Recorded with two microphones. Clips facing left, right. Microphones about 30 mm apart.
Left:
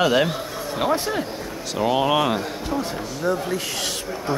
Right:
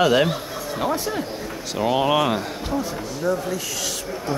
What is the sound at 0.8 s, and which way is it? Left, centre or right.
Speech, left.